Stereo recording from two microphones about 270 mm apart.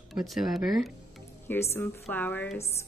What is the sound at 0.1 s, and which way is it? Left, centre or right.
Speech, centre.